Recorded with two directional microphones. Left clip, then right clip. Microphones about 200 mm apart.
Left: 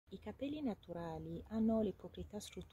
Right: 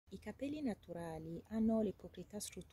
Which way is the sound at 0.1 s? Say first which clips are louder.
Even; 5° right (ahead or behind).